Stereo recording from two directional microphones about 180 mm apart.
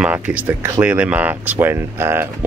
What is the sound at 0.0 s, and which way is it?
Speech, 10° right (ahead or behind).